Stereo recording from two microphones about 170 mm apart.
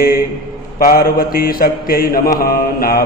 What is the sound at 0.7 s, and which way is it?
Mantra, 60° left (ahead or behind).